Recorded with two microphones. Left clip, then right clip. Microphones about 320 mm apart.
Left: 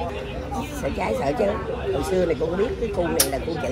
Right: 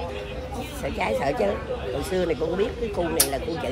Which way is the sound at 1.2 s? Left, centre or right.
Centre.